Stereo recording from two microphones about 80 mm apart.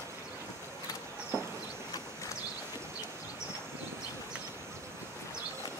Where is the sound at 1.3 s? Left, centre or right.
Right.